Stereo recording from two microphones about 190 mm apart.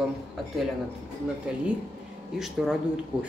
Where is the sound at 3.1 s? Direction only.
10° right (ahead or behind).